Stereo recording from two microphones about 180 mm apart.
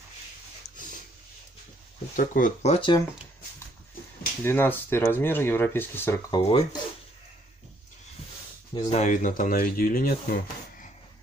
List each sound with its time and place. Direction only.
2.1 s speech: 50° left (ahead or behind)
2.7 s speech: 30° left (ahead or behind)
4.4 s speech: 15° left (ahead or behind)
6.3 s speech: 25° left (ahead or behind)
8.9 s speech: 40° left (ahead or behind)